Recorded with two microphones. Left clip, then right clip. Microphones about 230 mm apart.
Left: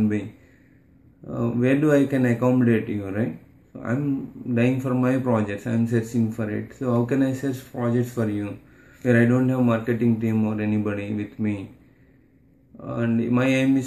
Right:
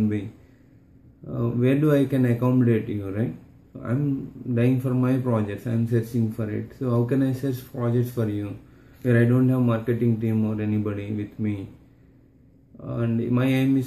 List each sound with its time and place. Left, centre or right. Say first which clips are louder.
1.2 s speech: left 1 dB; centre
4.6 s speech: left 1 dB; centre
12.8 s speech: left 2 dB; centre